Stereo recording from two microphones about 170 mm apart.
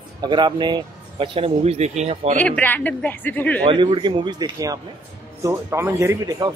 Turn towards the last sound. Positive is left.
turn(degrees=-15)  # may be behind; listen again after turning